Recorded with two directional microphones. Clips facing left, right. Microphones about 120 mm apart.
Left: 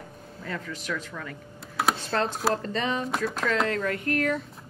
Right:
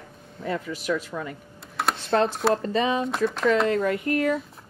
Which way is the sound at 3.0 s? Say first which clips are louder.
Right 5 dB; centre (ahead or behind).